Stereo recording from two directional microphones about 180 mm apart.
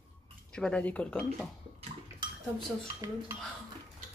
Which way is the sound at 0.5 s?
5° left (ahead or behind).